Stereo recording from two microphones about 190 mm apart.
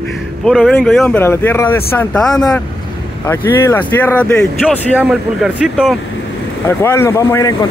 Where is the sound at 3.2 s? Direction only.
15° left (ahead or behind).